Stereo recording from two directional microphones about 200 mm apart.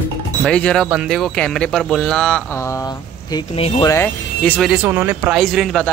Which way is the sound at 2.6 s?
15° left (ahead or behind).